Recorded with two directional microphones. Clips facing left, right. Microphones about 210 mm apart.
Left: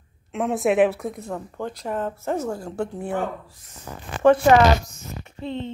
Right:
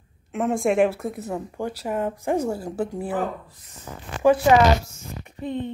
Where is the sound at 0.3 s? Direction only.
Centre (ahead or behind).